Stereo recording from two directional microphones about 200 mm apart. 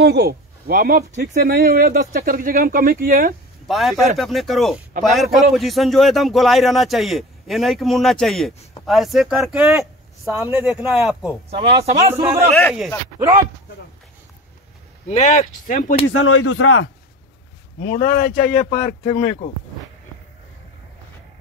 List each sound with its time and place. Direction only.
0.0 s speech: 55° right (ahead or behind)
3.6 s a man's voice: centre (ahead or behind)
11.5 s speech: 30° right (ahead or behind)
12.1 s a man's voice: 15° right (ahead or behind)
15.0 s speech: 35° left (ahead or behind)
16.1 s speech: 90° left
17.7 s speech: 45° left (ahead or behind)